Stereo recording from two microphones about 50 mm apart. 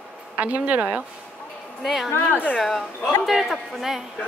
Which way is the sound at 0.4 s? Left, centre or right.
Right.